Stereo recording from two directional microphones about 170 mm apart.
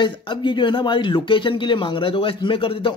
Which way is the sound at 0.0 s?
25° left (ahead or behind).